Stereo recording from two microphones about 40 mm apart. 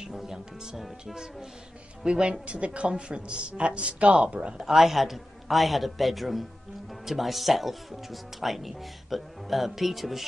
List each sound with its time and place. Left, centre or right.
0.0 s a woman's voice: centre; by 4.6 s right
4.6 s speech: centre